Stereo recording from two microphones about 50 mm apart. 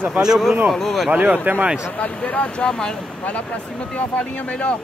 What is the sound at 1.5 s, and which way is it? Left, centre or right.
Speech, right.